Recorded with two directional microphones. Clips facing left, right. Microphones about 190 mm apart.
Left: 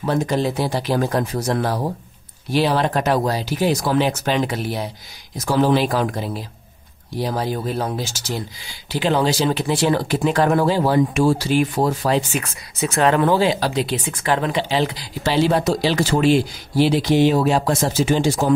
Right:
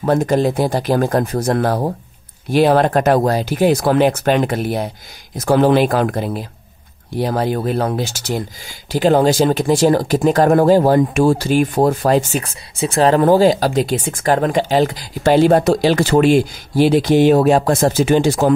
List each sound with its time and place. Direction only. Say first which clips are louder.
0.0 s speech: right 5 dB; 50° right (ahead or behind)
12.4 s speech: right 3 dB; 30° right (ahead or behind); by 18.5 s 60° right (ahead or behind)